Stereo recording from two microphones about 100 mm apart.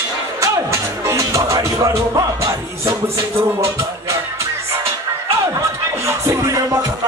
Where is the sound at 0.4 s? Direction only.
30° right (ahead or behind).